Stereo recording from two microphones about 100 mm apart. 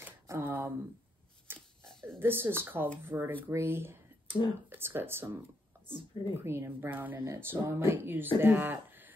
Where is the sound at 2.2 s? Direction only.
25° right (ahead or behind).